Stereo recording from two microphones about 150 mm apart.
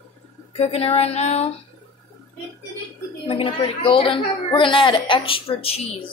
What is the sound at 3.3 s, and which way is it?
A woman's voice, 35° left (ahead or behind).